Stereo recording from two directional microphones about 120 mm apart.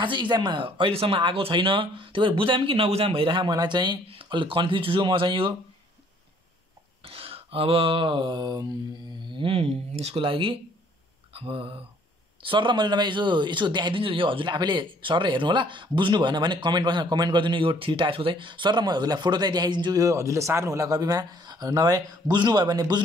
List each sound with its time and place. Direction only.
0.0 s speech: 40° right (ahead or behind)
7.0 s mantra: 50° right (ahead or behind)
9.3 s speech: 45° right (ahead or behind)